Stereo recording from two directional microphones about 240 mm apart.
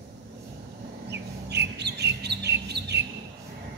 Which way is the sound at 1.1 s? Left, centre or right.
Right.